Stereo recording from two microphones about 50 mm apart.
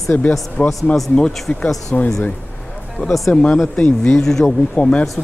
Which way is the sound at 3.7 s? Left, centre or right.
Left.